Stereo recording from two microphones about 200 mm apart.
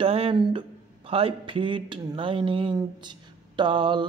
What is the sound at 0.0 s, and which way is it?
Speech, 30° right (ahead or behind).